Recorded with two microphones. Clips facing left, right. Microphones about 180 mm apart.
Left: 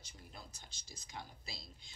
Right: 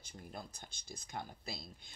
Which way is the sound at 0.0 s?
55° right (ahead or behind).